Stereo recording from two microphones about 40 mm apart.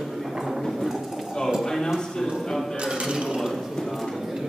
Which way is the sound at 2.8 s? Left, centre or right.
Centre.